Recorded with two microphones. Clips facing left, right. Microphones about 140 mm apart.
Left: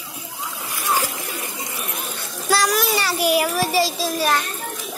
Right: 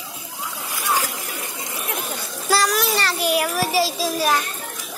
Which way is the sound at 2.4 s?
Centre (ahead or behind).